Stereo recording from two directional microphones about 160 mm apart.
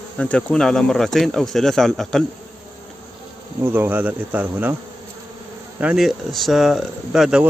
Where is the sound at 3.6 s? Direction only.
15° right (ahead or behind).